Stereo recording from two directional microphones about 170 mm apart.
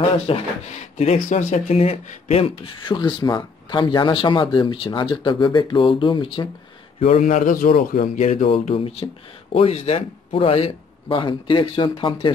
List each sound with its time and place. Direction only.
0.2 s speech: 40° left (ahead or behind)
7.0 s speech: 40° left (ahead or behind)